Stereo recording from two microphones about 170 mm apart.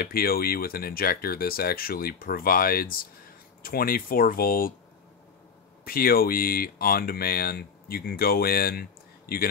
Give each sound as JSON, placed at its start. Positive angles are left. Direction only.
{"t": 0.0, "sound": "speech", "side_deg": 60}
{"t": 5.9, "sound": "speech", "side_deg": 60}